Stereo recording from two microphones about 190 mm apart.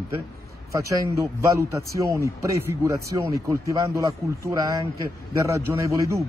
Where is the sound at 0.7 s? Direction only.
15° right (ahead or behind).